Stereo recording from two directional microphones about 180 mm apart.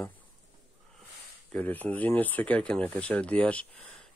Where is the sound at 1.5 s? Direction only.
10° left (ahead or behind).